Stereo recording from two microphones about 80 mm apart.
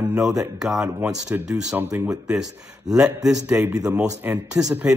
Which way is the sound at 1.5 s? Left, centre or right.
Right.